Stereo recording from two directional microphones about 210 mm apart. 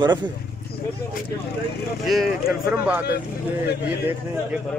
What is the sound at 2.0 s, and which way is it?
Speech, centre (ahead or behind).